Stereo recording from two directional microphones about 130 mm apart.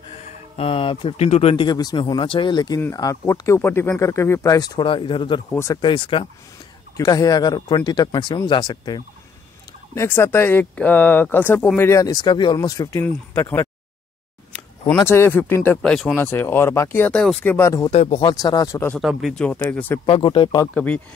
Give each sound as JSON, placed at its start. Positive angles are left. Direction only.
{"t": 0.6, "sound": "speech", "side_deg": 45}
{"t": 1.7, "sound": "speech", "side_deg": 30}
{"t": 5.5, "sound": "speech", "side_deg": 20}
{"t": 5.8, "sound": "speech", "side_deg": 40}
{"t": 7.0, "sound": "speech", "side_deg": 30}
{"t": 9.9, "sound": "speech", "side_deg": 20}
{"t": 13.0, "sound": "speech", "side_deg": 15}
{"t": 15.0, "sound": "speech", "side_deg": 20}
{"t": 16.2, "sound": "speech", "side_deg": 15}
{"t": 17.9, "sound": "speech", "side_deg": 50}
{"t": 18.3, "sound": "speech", "side_deg": 30}
{"t": 18.9, "sound": "speech", "side_deg": 0}
{"t": 20.1, "sound": "speech", "side_deg": 40}
{"t": 20.7, "sound": "speech", "side_deg": 10}